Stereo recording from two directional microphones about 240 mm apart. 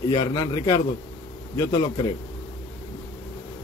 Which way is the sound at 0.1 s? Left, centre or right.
Centre.